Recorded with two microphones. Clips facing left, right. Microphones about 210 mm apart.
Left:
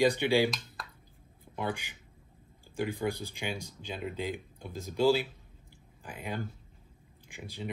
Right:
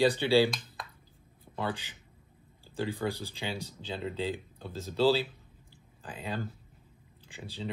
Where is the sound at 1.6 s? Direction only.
15° left (ahead or behind).